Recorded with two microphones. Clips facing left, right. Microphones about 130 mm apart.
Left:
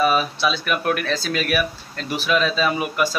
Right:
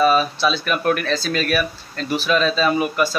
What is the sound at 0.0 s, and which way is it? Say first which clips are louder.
Speech: right 3 dB; 10° left (ahead or behind).